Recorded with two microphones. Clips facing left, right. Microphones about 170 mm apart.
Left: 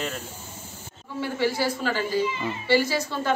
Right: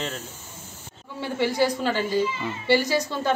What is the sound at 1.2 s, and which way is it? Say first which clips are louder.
Speech: even; 15° right (ahead or behind).